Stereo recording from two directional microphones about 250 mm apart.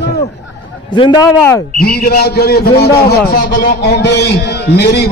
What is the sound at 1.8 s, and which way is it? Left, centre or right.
A man's voice, left.